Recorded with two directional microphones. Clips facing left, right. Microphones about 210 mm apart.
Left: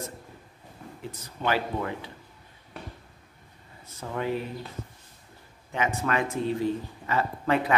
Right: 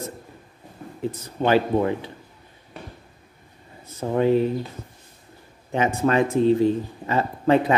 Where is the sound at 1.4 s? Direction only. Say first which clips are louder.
Right 9 dB; 25° right (ahead or behind).